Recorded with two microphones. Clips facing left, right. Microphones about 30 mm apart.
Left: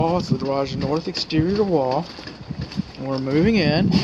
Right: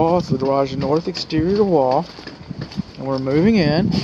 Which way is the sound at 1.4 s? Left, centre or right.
Centre.